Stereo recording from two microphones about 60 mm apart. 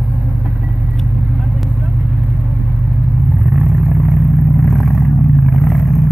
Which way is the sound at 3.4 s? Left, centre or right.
Centre.